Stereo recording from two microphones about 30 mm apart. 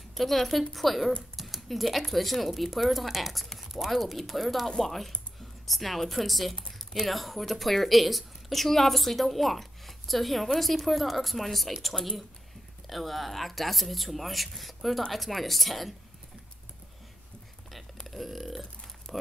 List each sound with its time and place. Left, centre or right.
0.1 s a woman's voice: centre
18.0 s speech: centre